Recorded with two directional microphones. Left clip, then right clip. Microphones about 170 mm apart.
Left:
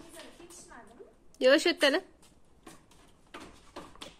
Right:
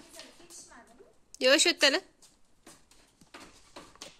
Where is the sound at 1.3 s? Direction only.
10° right (ahead or behind).